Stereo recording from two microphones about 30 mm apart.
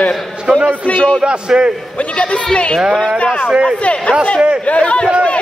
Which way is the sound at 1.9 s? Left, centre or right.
Left.